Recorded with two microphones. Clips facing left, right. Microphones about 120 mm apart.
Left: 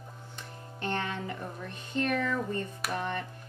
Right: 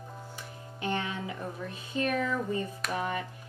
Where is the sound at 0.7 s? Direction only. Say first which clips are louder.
Even; 10° right (ahead or behind).